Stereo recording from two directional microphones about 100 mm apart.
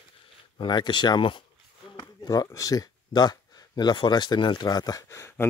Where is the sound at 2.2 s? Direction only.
35° left (ahead or behind).